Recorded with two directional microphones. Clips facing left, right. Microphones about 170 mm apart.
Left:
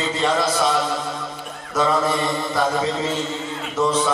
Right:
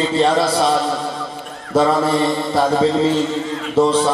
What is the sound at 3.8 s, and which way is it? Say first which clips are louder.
Speech: right 6 dB; 30° right (ahead or behind).